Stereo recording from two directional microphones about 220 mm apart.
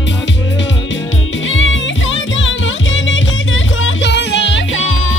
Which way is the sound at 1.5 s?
60° left (ahead or behind).